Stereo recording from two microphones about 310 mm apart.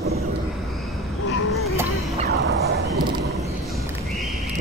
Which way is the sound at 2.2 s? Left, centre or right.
Right.